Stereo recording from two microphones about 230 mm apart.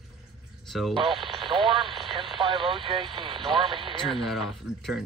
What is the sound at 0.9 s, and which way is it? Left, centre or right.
Speech, right.